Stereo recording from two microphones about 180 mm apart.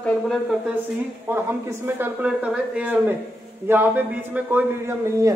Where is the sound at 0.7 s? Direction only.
10° right (ahead or behind).